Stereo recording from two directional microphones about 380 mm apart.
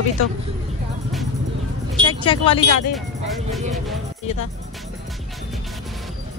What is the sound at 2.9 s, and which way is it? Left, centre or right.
Speech, centre.